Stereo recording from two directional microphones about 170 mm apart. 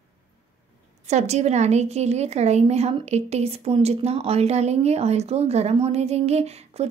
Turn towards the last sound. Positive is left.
turn(degrees=-40)  # may be behind; listen again after turning